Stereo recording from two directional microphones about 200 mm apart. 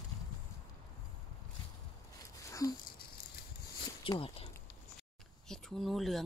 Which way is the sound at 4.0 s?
25° left (ahead or behind).